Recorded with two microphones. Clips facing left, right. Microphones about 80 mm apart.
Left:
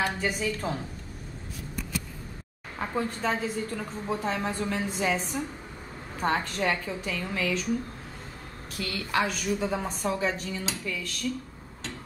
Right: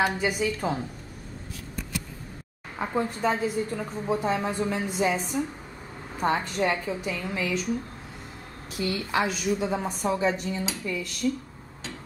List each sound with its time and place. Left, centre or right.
0.0 s a woman's voice: centre
2.8 s a woman's voice: centre
8.7 s a woman's voice: centre